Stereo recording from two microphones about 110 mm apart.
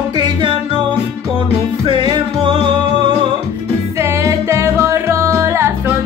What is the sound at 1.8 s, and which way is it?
Music, 45° right (ahead or behind).